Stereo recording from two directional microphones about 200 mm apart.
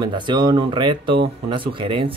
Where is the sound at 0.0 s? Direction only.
25° right (ahead or behind).